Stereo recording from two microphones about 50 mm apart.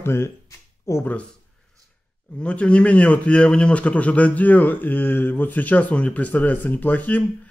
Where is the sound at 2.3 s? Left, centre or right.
Left.